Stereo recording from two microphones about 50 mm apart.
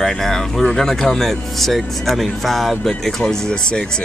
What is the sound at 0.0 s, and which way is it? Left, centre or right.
Speech, centre.